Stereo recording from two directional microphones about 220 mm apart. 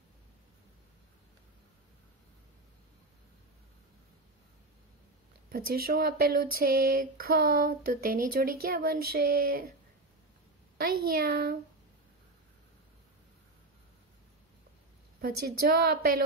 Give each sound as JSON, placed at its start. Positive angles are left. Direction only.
{"t": 5.5, "sound": "speech", "side_deg": -45}
{"t": 10.8, "sound": "speech", "side_deg": -45}
{"t": 15.2, "sound": "a woman's voice", "side_deg": -45}